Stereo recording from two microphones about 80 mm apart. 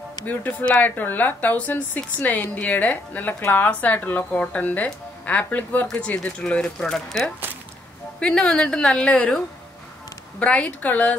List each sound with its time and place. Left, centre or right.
0.2 s a woman's voice: left
10.4 s a woman's voice: centre